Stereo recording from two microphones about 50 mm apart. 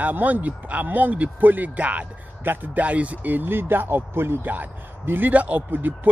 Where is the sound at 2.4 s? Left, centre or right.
Right.